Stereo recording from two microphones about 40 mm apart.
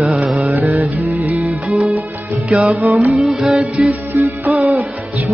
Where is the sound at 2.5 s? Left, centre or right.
Right.